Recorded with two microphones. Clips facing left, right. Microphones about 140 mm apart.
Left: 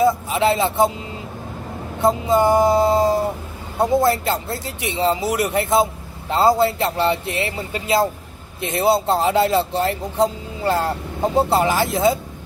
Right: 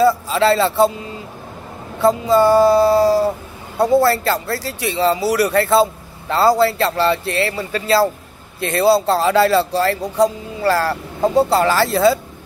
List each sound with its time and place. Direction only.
0.3 s a man's voice: 15° left (ahead or behind)